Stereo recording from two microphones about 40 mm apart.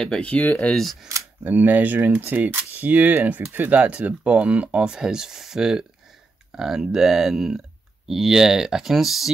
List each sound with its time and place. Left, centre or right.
0.2 s speech: left
1.4 s speech: right
4.8 s speech: centre